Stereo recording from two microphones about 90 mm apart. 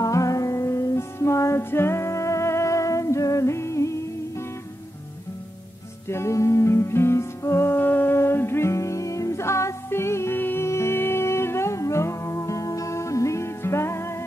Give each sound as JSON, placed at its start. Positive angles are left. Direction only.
{"t": 0.0, "sound": "music", "side_deg": 40}
{"t": 6.0, "sound": "music", "side_deg": 30}